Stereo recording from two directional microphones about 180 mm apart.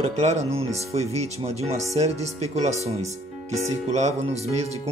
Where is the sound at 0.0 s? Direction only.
35° right (ahead or behind).